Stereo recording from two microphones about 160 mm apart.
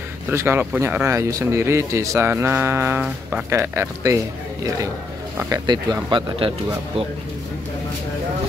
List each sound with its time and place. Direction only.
0.3 s speech: 15° right (ahead or behind)
5.4 s speech: 25° right (ahead or behind)